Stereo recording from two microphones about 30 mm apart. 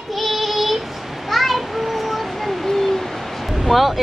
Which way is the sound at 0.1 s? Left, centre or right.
Centre.